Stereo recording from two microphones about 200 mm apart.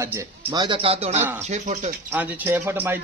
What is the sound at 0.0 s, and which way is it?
Speech, 15° right (ahead or behind).